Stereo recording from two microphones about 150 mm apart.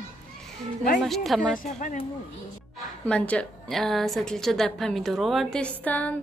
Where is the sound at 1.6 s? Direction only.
65° left (ahead or behind).